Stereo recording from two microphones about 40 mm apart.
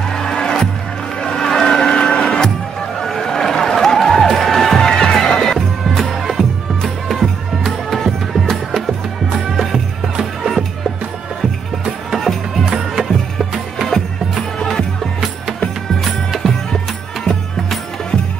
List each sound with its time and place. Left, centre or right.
0.1 s music: centre
12.2 s music: centre
12.7 s music: centre
14.6 s music: centre
16.0 s music: centre